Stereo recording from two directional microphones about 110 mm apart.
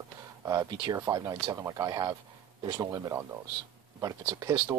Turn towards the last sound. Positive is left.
turn(degrees=-30)  # may be behind; listen again after turning